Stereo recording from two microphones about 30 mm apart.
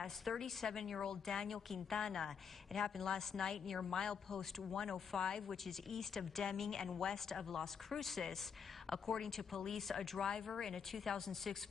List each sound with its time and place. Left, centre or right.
0.3 s a woman's voice: centre
0.6 s a woman's voice: left
10.2 s a woman's voice: left